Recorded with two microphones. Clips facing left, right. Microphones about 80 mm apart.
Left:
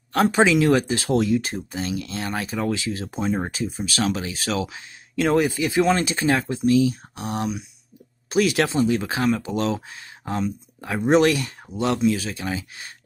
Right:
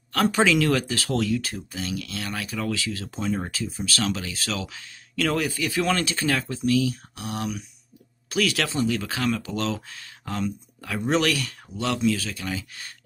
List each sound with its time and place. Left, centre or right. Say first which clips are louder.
0.1 s speech: left 3 dB; left